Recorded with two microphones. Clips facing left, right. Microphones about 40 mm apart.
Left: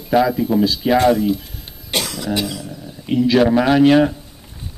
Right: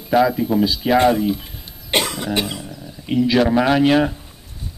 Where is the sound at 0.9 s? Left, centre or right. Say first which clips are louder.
Even; right.